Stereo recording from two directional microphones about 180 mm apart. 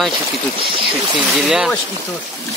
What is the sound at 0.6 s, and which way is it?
Speech, 30° right (ahead or behind).